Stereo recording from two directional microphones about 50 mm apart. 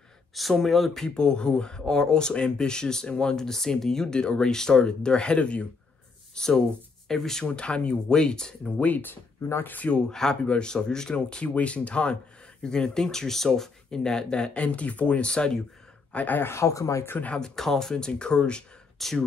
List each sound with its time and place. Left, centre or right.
0.3 s speech: centre
1.0 s speech: centre
6.3 s speech: centre
7.4 s speech: left
8.8 s speech: left
9.9 s speech: centre
16.1 s speech: left
16.3 s speech: left
16.6 s speech: left
17.4 s speech: centre
18.9 s speech: centre